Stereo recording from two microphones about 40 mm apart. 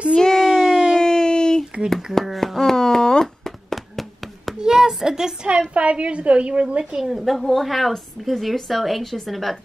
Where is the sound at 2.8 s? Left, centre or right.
Centre.